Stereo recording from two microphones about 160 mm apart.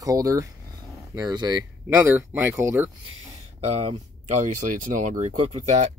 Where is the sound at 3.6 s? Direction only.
40° right (ahead or behind).